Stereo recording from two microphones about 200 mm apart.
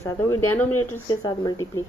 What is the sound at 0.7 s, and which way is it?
Speech, 90° left.